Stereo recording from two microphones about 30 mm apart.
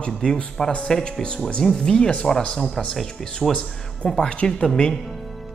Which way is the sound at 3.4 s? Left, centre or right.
Centre.